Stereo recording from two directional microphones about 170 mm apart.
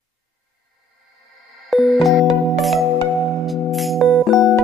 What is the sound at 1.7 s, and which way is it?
Music, centre (ahead or behind).